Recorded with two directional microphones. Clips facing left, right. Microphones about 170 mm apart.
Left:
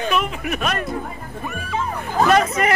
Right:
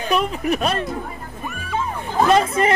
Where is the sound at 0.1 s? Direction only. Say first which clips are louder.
Right 3 dB; 35° right (ahead or behind).